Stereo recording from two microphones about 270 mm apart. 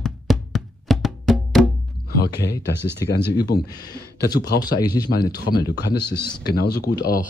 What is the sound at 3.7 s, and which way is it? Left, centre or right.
Speech, centre.